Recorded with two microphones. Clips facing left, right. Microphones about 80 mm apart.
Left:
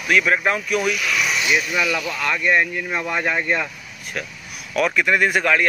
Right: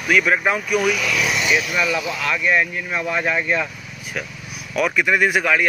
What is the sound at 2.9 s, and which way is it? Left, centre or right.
Speech, left.